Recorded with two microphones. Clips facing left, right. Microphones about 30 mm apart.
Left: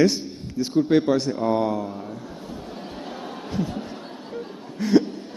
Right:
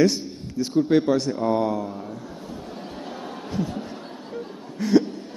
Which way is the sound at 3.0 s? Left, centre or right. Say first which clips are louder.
Even; centre.